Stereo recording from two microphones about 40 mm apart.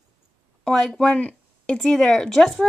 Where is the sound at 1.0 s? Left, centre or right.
Left.